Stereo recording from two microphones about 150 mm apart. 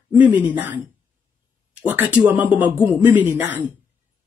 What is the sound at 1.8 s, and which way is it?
Speech, 10° right (ahead or behind).